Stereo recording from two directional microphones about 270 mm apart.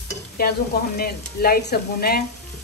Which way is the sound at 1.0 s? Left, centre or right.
Left.